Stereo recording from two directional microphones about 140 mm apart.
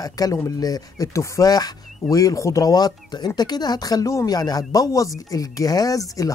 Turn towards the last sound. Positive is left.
turn(degrees=25)  # may be behind; listen again after turning